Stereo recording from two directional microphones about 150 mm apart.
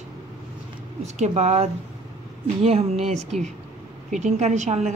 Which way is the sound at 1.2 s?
50° right (ahead or behind).